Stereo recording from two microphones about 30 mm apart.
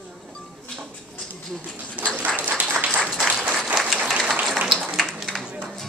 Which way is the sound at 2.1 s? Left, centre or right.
Right.